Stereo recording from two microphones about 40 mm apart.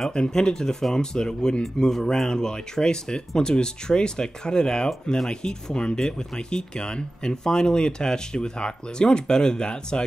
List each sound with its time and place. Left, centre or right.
0.1 s speech: centre